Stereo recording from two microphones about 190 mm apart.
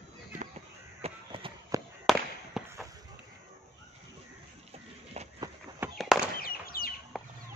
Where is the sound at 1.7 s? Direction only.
15° right (ahead or behind).